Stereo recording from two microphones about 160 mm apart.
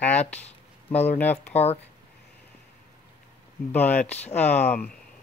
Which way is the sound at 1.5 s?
40° left (ahead or behind).